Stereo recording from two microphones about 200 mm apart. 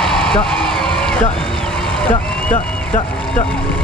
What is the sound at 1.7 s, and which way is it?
Vehicle, 5° left (ahead or behind).